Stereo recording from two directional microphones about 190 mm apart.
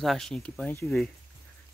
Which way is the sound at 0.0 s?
Centre (ahead or behind).